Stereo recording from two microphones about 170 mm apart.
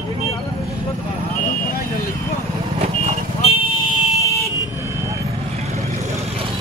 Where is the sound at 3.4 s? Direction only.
35° left (ahead or behind).